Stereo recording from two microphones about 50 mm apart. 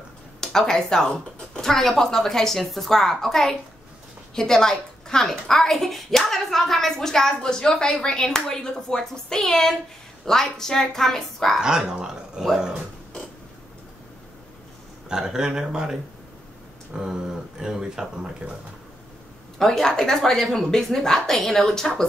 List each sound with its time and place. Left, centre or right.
0.4 s a woman's voice: centre
11.6 s speech: centre
15.0 s speech: centre
19.6 s a woman's voice: centre